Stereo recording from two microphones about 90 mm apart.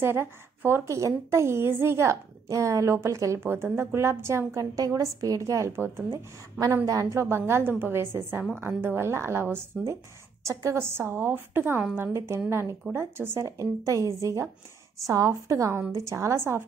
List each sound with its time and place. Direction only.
0.0 s a woman's voice: 25° right (ahead or behind)
4.7 s a woman's voice: 40° right (ahead or behind); by 12.1 s 15° right (ahead or behind)
12.1 s a woman's voice: 30° right (ahead or behind)